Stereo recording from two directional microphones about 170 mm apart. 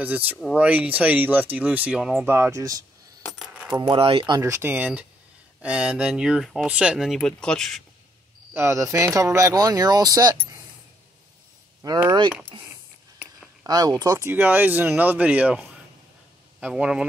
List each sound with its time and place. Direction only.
0.0 s speech: 10° right (ahead or behind)
3.3 s keys jangling: centre (ahead or behind)
3.7 s speech: 25° right (ahead or behind)
4.4 s speech: 15° right (ahead or behind); by 7.8 s 5° left (ahead or behind)
8.5 s speech: 15° right (ahead or behind)
11.8 s speech: 20° right (ahead or behind)
12.5 s a sound: 30° right (ahead or behind)
13.7 s speech: 20° right (ahead or behind); by 17.0 s 5° right (ahead or behind)